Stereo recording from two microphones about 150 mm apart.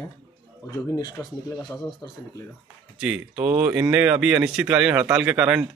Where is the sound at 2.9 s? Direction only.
5° right (ahead or behind).